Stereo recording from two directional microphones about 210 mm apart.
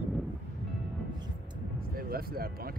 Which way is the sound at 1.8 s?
45° right (ahead or behind).